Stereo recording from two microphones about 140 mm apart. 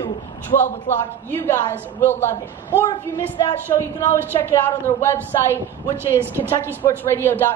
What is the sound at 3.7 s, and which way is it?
Speech, 35° left (ahead or behind).